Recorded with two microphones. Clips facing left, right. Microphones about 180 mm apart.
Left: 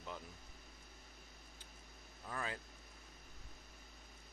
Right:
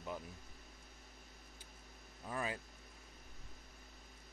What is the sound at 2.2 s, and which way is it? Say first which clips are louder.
Vehicle: right 3 dB; 15° right (ahead or behind).